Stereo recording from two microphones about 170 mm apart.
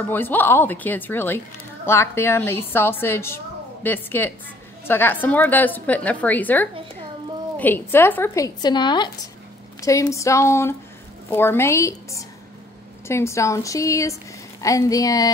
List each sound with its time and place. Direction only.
0.1 s a woman's voice: 10° left (ahead or behind)
8.5 s a woman's voice: 25° left (ahead or behind)